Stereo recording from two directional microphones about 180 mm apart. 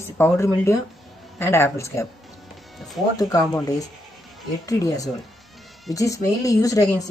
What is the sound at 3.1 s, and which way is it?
Speech, 20° left (ahead or behind).